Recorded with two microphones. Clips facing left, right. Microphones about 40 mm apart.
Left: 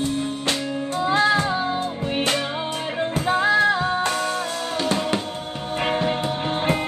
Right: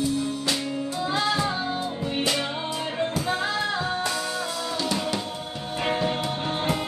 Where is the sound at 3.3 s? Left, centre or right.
Left.